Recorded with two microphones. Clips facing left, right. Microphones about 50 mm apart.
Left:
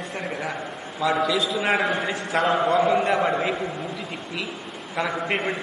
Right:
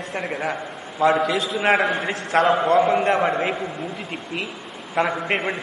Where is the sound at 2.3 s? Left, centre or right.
Right.